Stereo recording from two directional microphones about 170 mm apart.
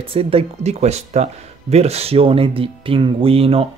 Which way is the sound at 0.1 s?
35° right (ahead or behind).